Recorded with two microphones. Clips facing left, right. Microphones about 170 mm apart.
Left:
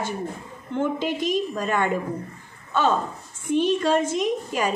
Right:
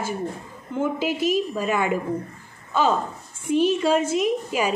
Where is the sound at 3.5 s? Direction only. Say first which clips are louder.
Right 1 dB; 10° right (ahead or behind).